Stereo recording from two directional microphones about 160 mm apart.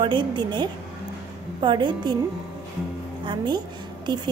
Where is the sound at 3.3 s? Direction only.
30° right (ahead or behind).